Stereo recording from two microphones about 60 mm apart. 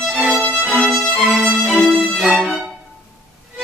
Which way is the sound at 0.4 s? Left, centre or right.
Centre.